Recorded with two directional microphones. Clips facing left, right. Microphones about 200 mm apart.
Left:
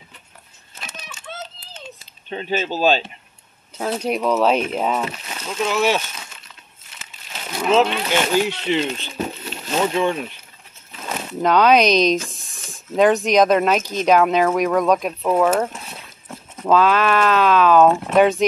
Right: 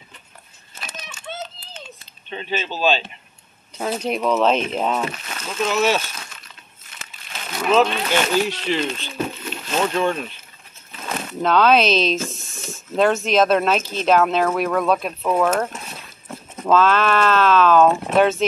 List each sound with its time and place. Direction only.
2.2 s speech: 40° left (ahead or behind)
3.7 s speech: 5° left (ahead or behind)
7.5 s a sound: 25° left (ahead or behind)
7.8 s speech: 15° left (ahead or behind)